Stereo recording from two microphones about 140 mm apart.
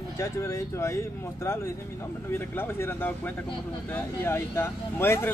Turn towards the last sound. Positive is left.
turn(degrees=15)  # may be behind; listen again after turning